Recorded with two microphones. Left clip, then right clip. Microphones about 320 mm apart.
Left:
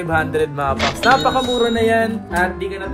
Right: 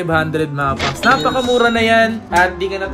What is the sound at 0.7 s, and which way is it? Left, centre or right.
Speech, centre.